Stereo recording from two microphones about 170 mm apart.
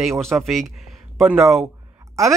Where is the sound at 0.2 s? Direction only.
Centre (ahead or behind).